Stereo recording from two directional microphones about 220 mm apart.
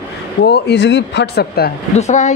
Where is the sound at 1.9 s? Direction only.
30° left (ahead or behind).